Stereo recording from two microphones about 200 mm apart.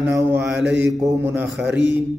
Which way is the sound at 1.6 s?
60° right (ahead or behind).